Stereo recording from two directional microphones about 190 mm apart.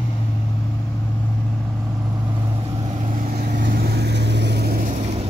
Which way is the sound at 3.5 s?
55° right (ahead or behind).